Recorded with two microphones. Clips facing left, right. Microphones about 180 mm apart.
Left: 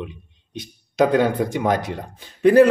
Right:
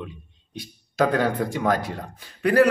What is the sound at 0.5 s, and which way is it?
A man's voice, 20° left (ahead or behind).